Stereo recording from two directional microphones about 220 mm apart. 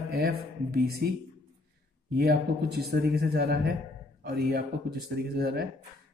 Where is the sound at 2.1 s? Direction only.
45° right (ahead or behind).